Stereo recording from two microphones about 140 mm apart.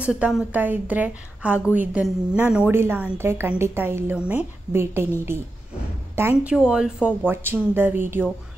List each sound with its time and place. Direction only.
0.0 s a woman's voice: 5° right (ahead or behind)
6.1 s a woman's voice: 20° right (ahead or behind)
6.5 s a woman's voice: 5° right (ahead or behind)